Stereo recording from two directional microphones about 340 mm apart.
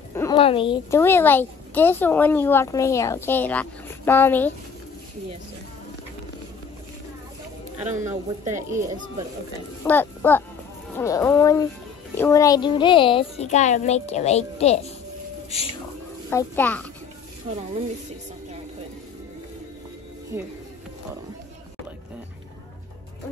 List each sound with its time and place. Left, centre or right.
0.1 s a woman's voice: centre
8.0 s speech: centre
9.8 s a woman's voice: centre
16.3 s speech: centre
20.3 s speech: centre